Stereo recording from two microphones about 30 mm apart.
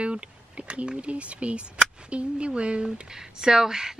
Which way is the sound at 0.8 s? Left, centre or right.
Right.